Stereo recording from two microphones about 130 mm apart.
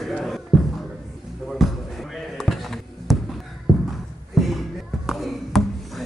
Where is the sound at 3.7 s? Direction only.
Centre (ahead or behind).